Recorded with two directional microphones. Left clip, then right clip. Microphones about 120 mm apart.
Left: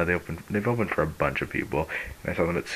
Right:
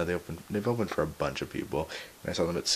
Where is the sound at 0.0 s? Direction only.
35° right (ahead or behind).